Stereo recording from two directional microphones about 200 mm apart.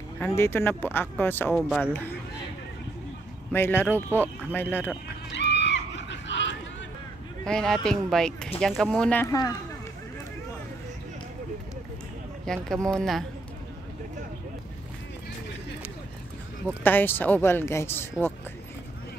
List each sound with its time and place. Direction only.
0.4 s speech: 10° left (ahead or behind)
1.5 s speech: centre (ahead or behind)
3.5 s speech: 10° left (ahead or behind)
5.3 s run: 60° left (ahead or behind)
7.4 s speech: 5° left (ahead or behind)
12.4 s speech: 5° left (ahead or behind)
16.6 s speech: 10° left (ahead or behind)